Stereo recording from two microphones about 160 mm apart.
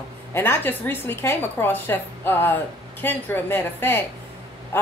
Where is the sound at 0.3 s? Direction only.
15° left (ahead or behind).